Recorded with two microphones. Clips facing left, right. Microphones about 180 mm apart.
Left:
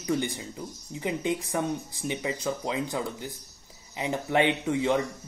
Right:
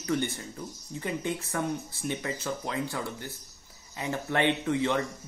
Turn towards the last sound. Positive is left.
turn(degrees=15)  # may be behind; listen again after turning